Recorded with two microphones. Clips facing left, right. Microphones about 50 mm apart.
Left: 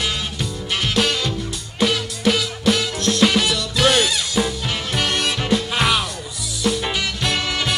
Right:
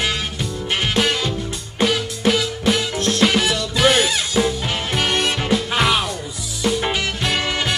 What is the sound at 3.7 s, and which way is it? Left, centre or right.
Music, centre.